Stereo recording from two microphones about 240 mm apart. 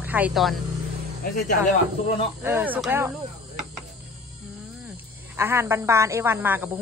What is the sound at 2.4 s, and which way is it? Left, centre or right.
Speech, centre.